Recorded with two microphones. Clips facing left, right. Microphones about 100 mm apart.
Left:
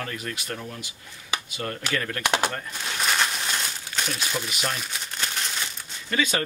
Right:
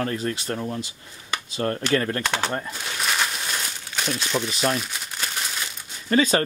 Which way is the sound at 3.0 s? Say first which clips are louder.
Even; centre (ahead or behind).